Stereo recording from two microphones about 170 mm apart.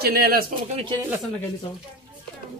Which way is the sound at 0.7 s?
30° right (ahead or behind).